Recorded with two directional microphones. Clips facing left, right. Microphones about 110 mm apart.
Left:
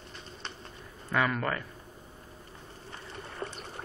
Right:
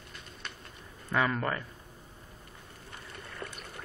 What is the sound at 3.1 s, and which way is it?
Boat, 30° left (ahead or behind).